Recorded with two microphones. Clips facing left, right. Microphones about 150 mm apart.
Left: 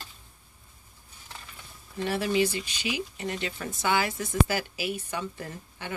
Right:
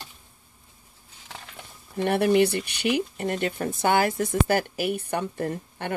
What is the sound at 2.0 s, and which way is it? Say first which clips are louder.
Speech: right 6 dB; 60° right (ahead or behind).